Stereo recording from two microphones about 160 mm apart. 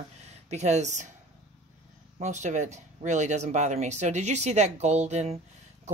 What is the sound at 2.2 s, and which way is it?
A woman's voice, 50° right (ahead or behind).